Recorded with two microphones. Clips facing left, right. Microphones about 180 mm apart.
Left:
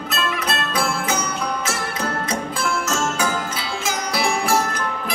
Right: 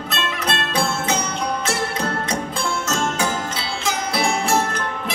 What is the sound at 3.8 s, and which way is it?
Music, 30° right (ahead or behind).